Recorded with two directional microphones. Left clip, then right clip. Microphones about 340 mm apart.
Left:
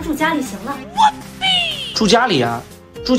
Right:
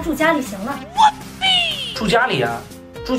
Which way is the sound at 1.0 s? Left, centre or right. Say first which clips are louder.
Even; centre.